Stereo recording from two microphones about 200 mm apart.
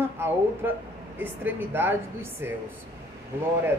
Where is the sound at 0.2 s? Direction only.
10° right (ahead or behind).